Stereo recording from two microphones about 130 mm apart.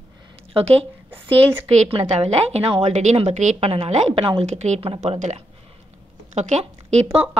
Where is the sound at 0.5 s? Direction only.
50° right (ahead or behind).